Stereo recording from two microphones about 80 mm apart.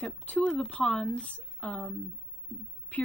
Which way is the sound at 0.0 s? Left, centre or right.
Centre.